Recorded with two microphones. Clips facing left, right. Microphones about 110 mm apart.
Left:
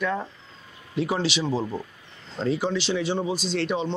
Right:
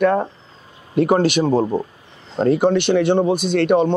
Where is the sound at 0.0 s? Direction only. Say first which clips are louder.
Right 11 dB; 55° right (ahead or behind).